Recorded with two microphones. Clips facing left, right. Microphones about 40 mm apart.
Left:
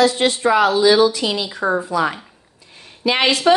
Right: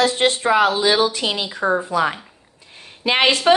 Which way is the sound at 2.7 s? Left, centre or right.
Right.